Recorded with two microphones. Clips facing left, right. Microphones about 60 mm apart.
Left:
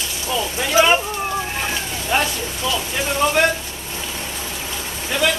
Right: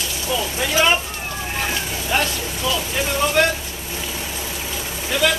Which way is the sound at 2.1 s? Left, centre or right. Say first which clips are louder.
Left 1 dB; centre.